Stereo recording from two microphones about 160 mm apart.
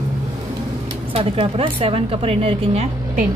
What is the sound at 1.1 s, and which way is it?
A woman's voice, 35° right (ahead or behind).